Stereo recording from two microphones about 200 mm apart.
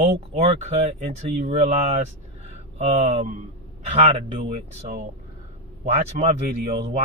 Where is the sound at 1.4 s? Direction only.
35° right (ahead or behind).